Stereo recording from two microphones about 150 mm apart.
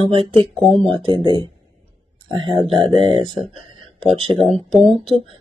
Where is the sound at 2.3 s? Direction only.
35° right (ahead or behind).